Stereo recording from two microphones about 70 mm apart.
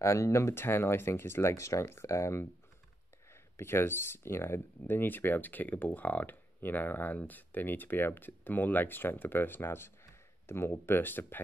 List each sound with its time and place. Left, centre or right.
0.0 s speech: left
3.5 s speech: left